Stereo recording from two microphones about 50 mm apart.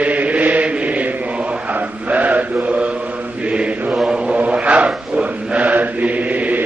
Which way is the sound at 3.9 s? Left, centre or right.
Centre.